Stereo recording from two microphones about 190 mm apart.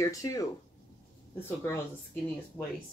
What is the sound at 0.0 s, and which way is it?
Speech, 15° left (ahead or behind).